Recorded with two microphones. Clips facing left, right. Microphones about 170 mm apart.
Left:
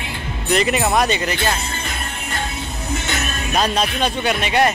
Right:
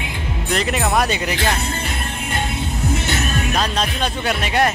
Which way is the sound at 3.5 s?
10° left (ahead or behind).